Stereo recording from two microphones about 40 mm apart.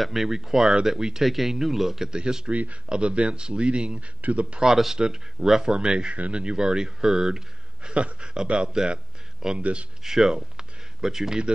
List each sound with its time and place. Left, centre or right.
0.0 s speech: centre
1.2 s speech: centre
2.1 s speech: right
2.5 s speech: right
4.6 s speech: centre
4.9 s speech: centre
7.9 s speech: right
9.6 s speech: right
10.0 s speech: centre